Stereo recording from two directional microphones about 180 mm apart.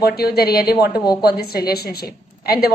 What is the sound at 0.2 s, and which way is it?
A woman's voice, 60° left (ahead or behind).